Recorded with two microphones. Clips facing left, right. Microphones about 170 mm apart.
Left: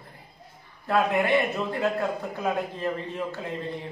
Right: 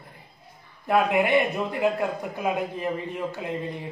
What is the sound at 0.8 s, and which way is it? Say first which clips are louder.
A man's voice: right 2 dB; 15° right (ahead or behind).